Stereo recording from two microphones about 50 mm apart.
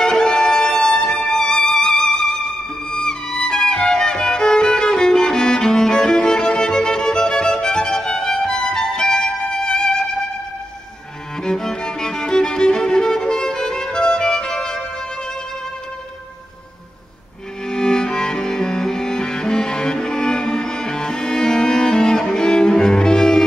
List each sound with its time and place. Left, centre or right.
0.0 s violin: centre
2.9 s music: centre
11.4 s music: centre
17.6 s music: centre